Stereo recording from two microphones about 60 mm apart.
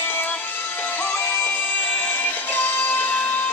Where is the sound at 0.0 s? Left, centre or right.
Left.